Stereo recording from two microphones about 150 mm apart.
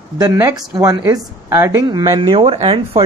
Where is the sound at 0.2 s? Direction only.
20° right (ahead or behind).